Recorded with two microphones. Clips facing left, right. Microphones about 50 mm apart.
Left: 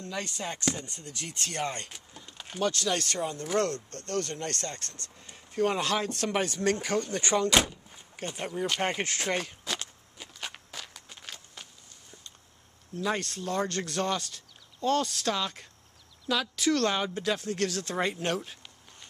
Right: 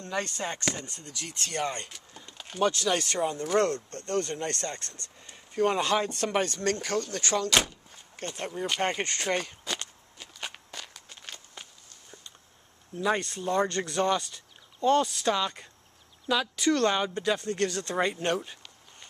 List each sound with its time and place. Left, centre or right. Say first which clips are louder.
0.2 s speech: even; centre
2.1 s a sound: even; centre
2.6 s speech: right 3 dB; centre
7.5 s door: left 1 dB; centre
13.0 s speech: right 3 dB; centre